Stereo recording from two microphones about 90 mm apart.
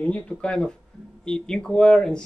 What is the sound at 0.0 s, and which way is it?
Speech, 15° left (ahead or behind).